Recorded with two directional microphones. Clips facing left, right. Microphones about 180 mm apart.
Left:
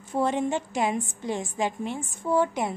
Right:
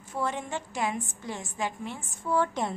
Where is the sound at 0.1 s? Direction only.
20° left (ahead or behind).